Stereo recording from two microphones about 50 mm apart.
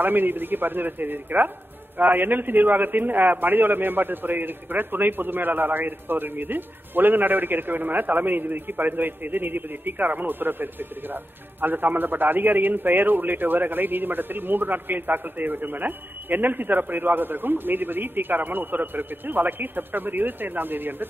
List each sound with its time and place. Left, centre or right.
0.0 s a man's voice: right